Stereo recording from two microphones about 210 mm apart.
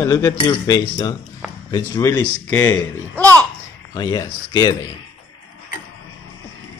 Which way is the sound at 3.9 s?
20° left (ahead or behind).